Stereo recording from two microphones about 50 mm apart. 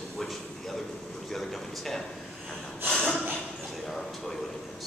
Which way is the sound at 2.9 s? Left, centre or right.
Centre.